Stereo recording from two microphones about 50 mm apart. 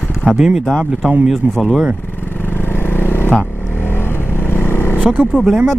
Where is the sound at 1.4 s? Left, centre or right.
Right.